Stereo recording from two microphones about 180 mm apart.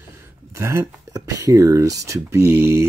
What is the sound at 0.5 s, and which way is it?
Speech, 15° right (ahead or behind).